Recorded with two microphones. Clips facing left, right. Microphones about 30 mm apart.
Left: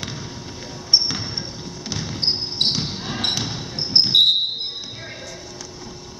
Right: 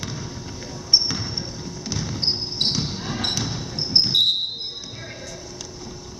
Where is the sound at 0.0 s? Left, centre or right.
Centre.